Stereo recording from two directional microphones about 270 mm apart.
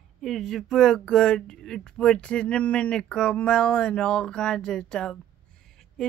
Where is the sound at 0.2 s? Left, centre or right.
Centre.